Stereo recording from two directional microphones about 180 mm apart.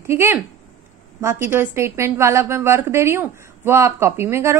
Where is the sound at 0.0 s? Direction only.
15° right (ahead or behind).